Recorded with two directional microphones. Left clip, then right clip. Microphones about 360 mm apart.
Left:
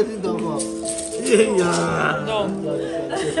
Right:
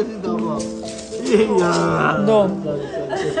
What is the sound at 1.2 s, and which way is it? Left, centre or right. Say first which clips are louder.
Speech: right 1 dB; centre.